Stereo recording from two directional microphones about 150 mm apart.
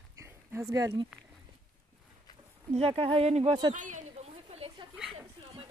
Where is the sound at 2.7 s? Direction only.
40° right (ahead or behind).